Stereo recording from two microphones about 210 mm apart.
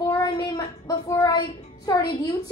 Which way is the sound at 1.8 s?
20° left (ahead or behind).